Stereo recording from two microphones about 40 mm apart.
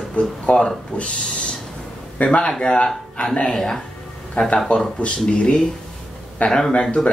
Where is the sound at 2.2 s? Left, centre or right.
Left.